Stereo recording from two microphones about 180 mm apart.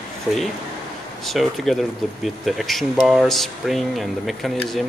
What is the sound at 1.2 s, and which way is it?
Speech, centre (ahead or behind).